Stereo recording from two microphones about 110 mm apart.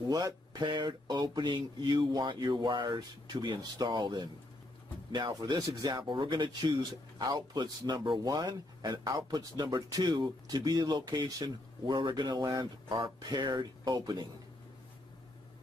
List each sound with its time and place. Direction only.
0.1 s speech: 35° right (ahead or behind)